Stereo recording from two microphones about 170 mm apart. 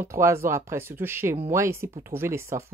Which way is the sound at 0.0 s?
15° right (ahead or behind).